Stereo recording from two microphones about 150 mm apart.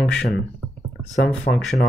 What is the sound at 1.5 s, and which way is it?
Speech, 55° left (ahead or behind).